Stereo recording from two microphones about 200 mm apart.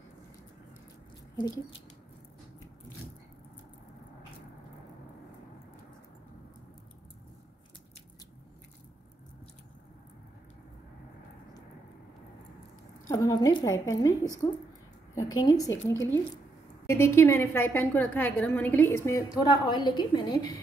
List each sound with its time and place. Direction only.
1.3 s a woman's voice: 20° left (ahead or behind)
13.1 s a woman's voice: 15° left (ahead or behind)